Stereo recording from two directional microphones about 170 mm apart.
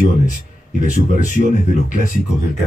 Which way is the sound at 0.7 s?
50° left (ahead or behind).